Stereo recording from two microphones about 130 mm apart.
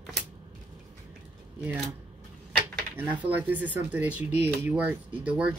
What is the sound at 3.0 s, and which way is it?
Speech, 15° right (ahead or behind).